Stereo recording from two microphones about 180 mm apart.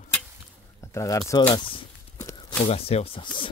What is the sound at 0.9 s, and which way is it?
Speech, 15° left (ahead or behind).